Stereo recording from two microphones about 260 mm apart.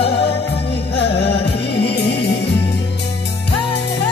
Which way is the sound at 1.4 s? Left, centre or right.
Left.